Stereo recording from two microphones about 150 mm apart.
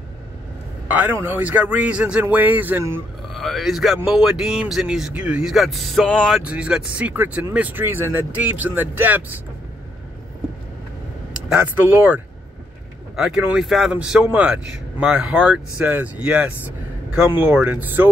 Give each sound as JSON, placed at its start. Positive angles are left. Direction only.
{"t": 0.8, "sound": "speech", "side_deg": -10}
{"t": 3.3, "sound": "speech", "side_deg": 0}
{"t": 11.4, "sound": "speech", "side_deg": -10}